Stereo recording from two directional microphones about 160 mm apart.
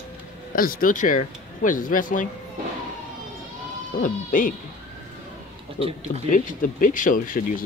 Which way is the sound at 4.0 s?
55° left (ahead or behind).